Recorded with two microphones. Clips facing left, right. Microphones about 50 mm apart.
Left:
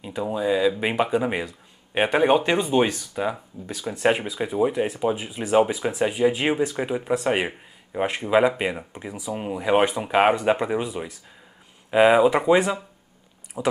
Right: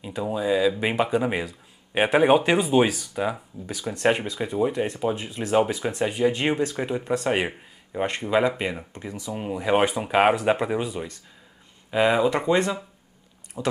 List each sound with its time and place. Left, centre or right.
0.0 s speech: centre